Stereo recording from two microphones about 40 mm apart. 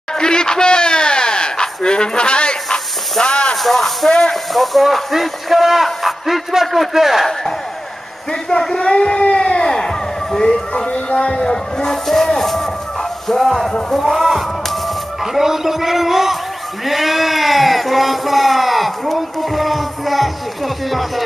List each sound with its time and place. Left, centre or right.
0.1 s a sound: centre
3.5 s speech: centre
8.3 s speech: centre
11.8 s speech: centre
13.7 s a man's voice: centre